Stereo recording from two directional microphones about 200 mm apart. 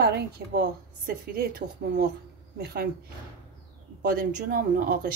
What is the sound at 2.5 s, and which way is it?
Speech, 55° right (ahead or behind).